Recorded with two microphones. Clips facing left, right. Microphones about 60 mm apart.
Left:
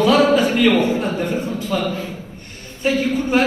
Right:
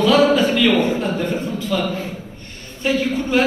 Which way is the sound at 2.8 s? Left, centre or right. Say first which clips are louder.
Left 1 dB; left.